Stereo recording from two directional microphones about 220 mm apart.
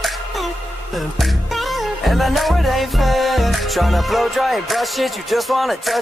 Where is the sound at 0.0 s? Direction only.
Centre (ahead or behind).